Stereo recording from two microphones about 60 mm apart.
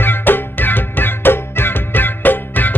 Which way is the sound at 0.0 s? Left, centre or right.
Left.